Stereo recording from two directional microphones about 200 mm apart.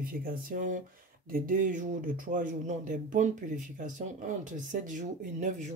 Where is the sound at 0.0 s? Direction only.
45° right (ahead or behind).